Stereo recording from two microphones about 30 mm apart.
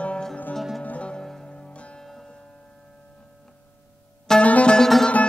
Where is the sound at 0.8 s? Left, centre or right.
Left.